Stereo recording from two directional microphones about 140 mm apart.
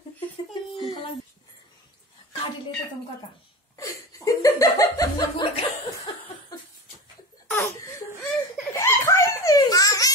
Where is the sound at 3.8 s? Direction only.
25° left (ahead or behind).